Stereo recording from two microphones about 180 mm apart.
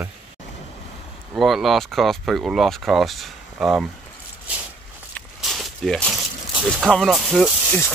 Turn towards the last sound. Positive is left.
turn(degrees=-5)  # may be behind; listen again after turning